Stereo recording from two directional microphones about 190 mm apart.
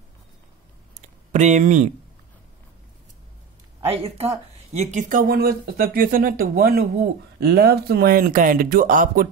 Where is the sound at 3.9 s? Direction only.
30° right (ahead or behind).